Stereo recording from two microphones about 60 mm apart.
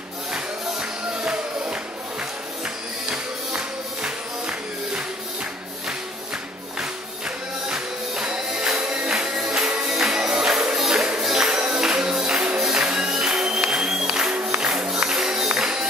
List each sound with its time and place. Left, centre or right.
0.3 s music: centre
6.8 s music: centre